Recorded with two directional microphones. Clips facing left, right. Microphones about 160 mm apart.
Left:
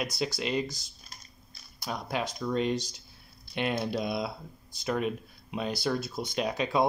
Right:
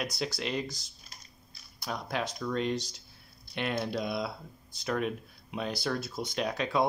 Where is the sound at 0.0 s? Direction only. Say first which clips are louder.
Left 2 dB; 5° left (ahead or behind).